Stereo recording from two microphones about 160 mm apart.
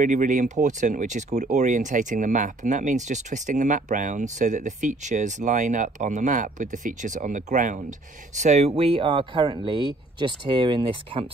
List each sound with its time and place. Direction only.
0.0 s speech: 55° right (ahead or behind); by 11.2 s 35° right (ahead or behind)